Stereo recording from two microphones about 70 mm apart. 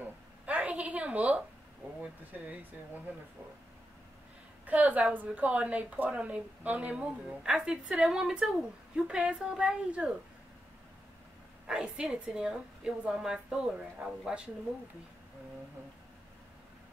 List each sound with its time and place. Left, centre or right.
0.0 s a sound: right
2.0 s speech: right
4.6 s a woman's voice: right
10.0 s speech: centre
11.6 s a woman's voice: centre